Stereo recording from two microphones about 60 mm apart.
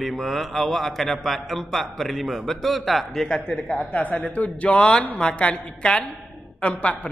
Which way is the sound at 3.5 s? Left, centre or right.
Left.